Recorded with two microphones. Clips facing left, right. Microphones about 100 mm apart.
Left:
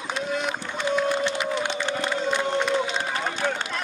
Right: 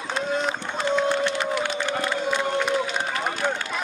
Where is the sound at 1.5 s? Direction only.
25° left (ahead or behind).